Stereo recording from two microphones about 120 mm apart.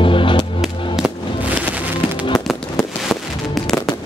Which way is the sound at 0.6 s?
5° right (ahead or behind).